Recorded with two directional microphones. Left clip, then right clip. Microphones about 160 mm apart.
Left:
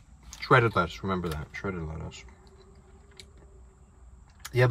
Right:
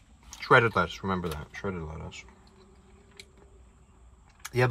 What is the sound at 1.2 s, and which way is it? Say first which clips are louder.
Speech: even; 30° right (ahead or behind).